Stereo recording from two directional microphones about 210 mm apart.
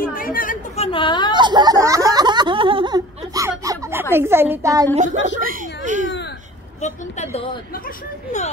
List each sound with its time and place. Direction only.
0.1 s chatter: 40° left (ahead or behind)
0.9 s a woman's voice: 20° left (ahead or behind)
1.3 s a sound: 20° right (ahead or behind)
4.1 s a woman's voice: 10° right (ahead or behind)
5.1 s speech: 60° left (ahead or behind)
5.4 s a sound: 40° right (ahead or behind)
6.8 s speech: 35° left (ahead or behind)